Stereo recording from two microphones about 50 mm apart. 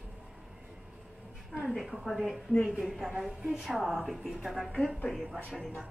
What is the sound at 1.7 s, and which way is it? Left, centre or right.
A woman's voice, centre.